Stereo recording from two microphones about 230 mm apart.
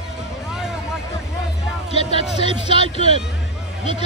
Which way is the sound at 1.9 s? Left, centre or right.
Left.